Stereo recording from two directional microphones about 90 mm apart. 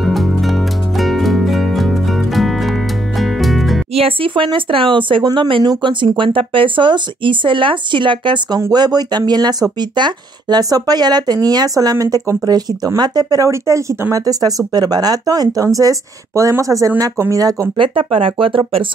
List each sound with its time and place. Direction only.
0.0 s music: centre (ahead or behind)
3.9 s speech: 85° right; by 8.5 s 65° right (ahead or behind)
8.7 s speech: 50° right (ahead or behind)
13.5 s speech: 35° right (ahead or behind)
17.7 s speech: 70° right (ahead or behind)